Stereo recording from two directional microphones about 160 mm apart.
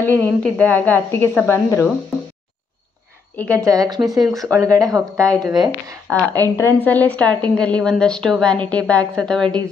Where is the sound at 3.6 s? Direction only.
25° right (ahead or behind).